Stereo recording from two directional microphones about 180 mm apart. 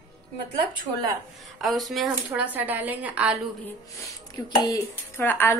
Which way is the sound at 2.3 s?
10° right (ahead or behind).